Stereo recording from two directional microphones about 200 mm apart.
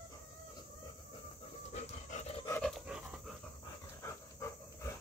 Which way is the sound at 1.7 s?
35° left (ahead or behind).